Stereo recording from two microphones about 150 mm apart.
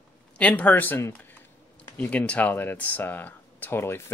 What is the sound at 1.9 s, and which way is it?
Speech, 10° left (ahead or behind).